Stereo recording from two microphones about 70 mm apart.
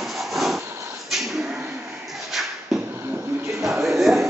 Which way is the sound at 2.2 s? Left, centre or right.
Centre.